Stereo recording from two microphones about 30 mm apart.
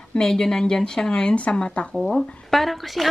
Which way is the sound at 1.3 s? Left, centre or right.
Left.